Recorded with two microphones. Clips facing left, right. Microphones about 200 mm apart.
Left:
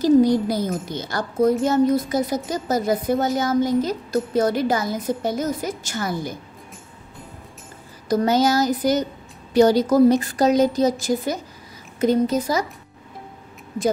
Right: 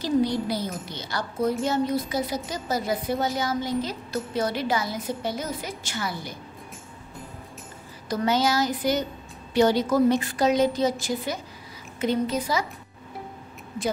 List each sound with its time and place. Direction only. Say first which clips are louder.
0.0 s a woman's voice: left 8 dB; 45° left (ahead or behind)
8.1 s a woman's voice: left 5 dB; 40° left (ahead or behind)